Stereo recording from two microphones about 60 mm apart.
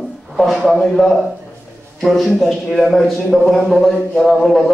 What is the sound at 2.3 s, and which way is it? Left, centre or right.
A man's voice, centre.